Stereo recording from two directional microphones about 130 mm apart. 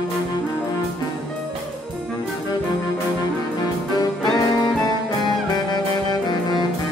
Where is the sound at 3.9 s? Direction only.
30° left (ahead or behind).